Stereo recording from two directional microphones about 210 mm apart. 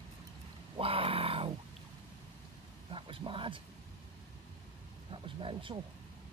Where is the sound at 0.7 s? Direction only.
25° right (ahead or behind).